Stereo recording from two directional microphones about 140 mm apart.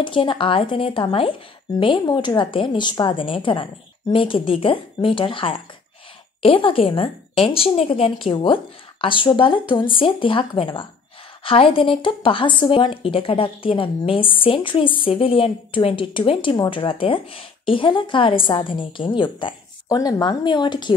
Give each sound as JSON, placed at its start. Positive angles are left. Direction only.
{"t": 0.0, "sound": "speech", "side_deg": 35}